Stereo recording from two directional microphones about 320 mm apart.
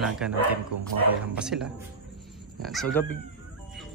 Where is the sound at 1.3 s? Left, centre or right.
Centre.